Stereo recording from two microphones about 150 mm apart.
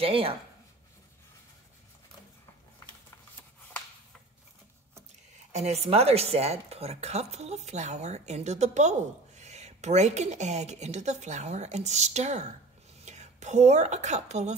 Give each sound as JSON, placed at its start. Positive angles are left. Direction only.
{"t": 0.0, "sound": "speech", "side_deg": -40}
{"t": 5.5, "sound": "speech", "side_deg": -45}